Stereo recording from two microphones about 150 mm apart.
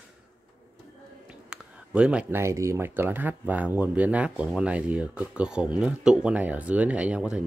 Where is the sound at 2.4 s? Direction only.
20° right (ahead or behind).